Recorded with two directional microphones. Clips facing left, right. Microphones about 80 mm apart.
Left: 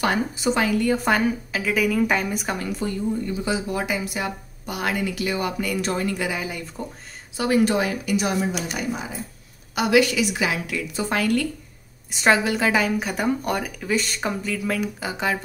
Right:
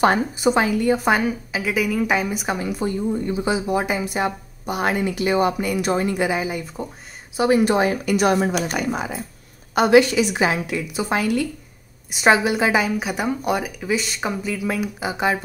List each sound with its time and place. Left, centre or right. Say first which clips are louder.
0.4 s a woman's voice: right 3 dB; right
2.8 s speech: right 3 dB; right
8.0 s speech: right 5 dB; right
9.8 s speech: right 4 dB; right
10.9 s a woman's voice: even; centre